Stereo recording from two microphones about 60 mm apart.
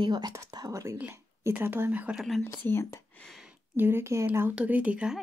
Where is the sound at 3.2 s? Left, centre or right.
Left.